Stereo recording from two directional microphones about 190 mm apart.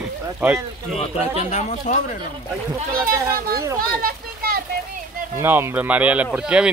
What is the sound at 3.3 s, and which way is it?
Speech, 55° right (ahead or behind).